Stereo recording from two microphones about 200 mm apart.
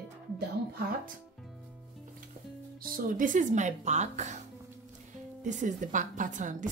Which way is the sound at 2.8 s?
45° right (ahead or behind).